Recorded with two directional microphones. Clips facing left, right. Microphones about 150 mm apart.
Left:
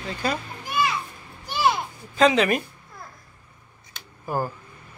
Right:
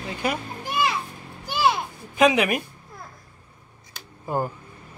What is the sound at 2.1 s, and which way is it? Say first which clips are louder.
Speech: even; 15° right (ahead or behind).